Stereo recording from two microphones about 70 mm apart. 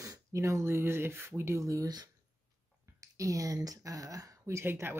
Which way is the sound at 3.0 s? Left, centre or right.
Right.